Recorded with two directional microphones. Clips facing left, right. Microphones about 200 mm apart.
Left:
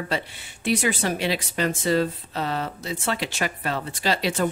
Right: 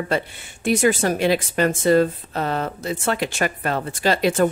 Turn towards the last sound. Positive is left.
turn(degrees=-50)  # may be behind; listen again after turning